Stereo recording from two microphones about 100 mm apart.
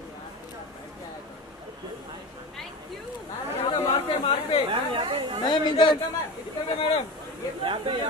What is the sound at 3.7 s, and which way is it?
Chatter, 60° left (ahead or behind).